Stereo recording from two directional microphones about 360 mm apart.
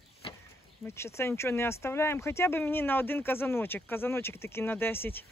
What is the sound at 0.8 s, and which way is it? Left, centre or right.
Speech, centre.